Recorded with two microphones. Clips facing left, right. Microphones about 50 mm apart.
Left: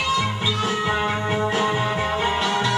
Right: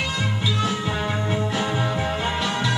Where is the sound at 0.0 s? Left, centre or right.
Left.